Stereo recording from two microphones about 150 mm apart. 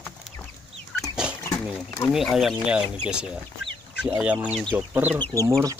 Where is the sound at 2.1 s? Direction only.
Centre (ahead or behind).